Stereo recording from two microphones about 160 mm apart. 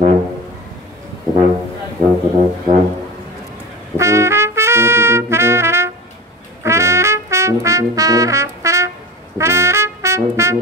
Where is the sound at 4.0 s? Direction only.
15° right (ahead or behind).